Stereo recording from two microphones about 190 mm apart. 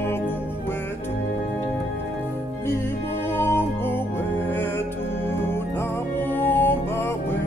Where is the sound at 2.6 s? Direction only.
15° left (ahead or behind).